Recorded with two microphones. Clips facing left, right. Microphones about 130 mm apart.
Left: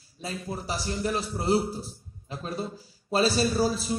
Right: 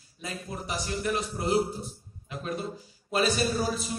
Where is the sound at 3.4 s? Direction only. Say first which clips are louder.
Left 3 dB; 30° left (ahead or behind).